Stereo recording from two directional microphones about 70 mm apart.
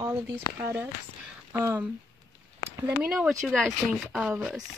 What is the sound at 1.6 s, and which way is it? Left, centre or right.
Speech, right.